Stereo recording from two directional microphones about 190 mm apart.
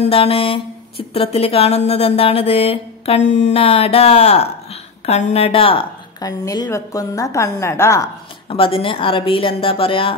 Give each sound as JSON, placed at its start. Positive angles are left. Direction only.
{"t": 0.0, "sound": "a sound", "side_deg": 30}
{"t": 5.0, "sound": "a woman's voice", "side_deg": 35}
{"t": 8.5, "sound": "a woman's voice", "side_deg": 30}